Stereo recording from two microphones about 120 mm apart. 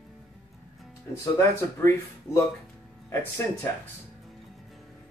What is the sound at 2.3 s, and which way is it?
Speech, 25° left (ahead or behind).